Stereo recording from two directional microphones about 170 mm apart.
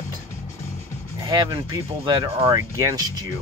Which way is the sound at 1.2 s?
25° right (ahead or behind).